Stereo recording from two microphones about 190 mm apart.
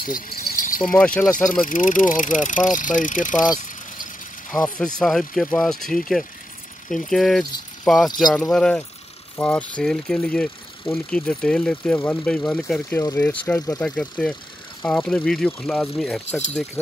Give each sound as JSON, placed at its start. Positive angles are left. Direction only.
{"t": 0.0, "sound": "rattle", "side_deg": 45}
{"t": 0.9, "sound": "speech", "side_deg": 5}
{"t": 1.2, "sound": "speech", "side_deg": 45}
{"t": 4.5, "sound": "speech", "side_deg": 5}